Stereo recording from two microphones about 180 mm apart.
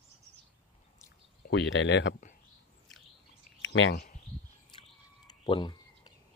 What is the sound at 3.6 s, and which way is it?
Speech, 90° left.